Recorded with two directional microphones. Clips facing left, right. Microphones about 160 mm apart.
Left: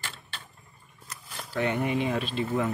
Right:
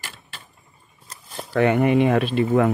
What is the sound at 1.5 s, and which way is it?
Speech, 65° right (ahead or behind).